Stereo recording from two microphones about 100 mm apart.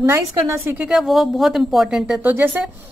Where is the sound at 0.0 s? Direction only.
25° right (ahead or behind).